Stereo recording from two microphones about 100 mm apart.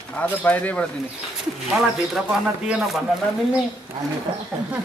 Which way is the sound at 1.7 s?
5° right (ahead or behind).